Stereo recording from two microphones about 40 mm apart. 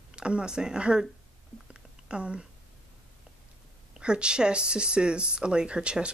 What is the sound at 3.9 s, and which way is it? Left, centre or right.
Speech, right.